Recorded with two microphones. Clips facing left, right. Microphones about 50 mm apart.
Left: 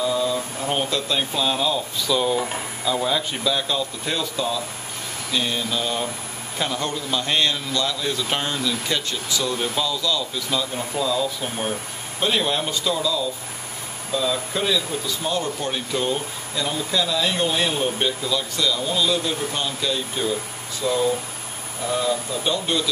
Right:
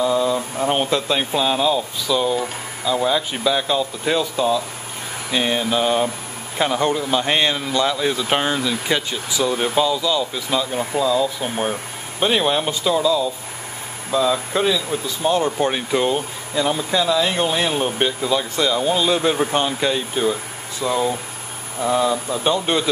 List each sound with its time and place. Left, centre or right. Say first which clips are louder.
0.0 s speech: right 4 dB; centre
5.3 s speech: right 5 dB; right
20.8 s speech: right 1 dB; centre